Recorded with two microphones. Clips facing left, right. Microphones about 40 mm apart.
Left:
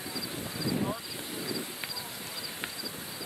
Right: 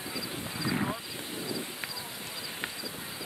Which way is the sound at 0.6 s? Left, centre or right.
Right.